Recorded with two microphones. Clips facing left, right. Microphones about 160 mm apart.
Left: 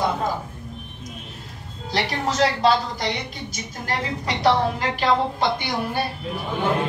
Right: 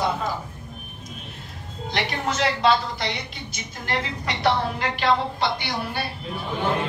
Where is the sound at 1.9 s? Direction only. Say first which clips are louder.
Left 2 dB; 35° left (ahead or behind).